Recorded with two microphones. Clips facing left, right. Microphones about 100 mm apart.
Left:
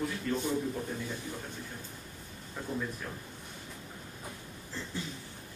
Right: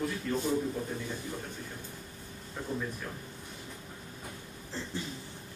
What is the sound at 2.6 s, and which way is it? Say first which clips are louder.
Speech: right 1 dB; centre (ahead or behind).